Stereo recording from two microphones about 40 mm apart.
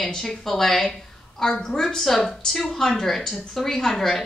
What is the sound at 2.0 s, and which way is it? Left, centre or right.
A woman's voice, centre.